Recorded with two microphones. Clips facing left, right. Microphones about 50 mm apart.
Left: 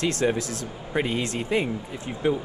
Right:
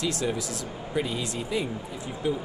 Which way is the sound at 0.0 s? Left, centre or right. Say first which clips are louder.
Left 4 dB; left.